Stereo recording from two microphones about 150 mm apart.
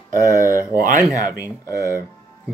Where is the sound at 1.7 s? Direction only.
20° right (ahead or behind).